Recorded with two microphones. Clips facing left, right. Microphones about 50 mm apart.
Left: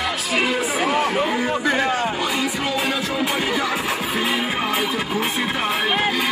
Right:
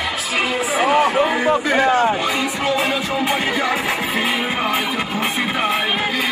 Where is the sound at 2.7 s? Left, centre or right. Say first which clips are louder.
Right 3 dB; right.